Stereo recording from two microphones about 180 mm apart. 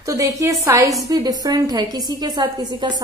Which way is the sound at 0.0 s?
20° right (ahead or behind).